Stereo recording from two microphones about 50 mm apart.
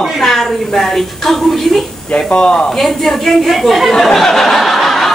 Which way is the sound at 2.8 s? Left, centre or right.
Centre.